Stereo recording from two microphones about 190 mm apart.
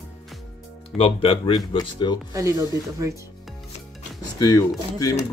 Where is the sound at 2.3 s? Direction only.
15° right (ahead or behind).